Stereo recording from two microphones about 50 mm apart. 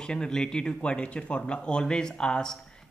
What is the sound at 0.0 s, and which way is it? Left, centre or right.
A man's voice, centre.